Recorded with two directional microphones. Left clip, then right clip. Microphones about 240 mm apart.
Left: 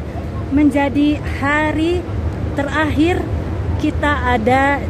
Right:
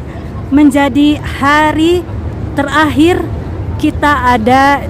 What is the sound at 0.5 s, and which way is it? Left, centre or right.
Speech, centre.